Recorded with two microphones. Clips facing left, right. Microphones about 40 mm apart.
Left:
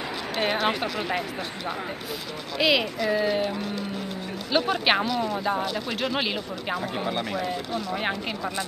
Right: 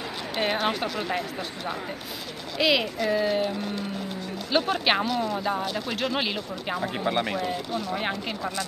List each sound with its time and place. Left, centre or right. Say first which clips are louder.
0.4 s speech: left 1 dB; centre
2.6 s speech: even; centre
7.1 s speech: right 6 dB; centre
7.3 s speech: even; centre